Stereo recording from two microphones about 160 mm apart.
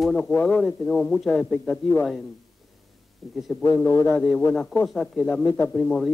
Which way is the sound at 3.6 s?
20° left (ahead or behind).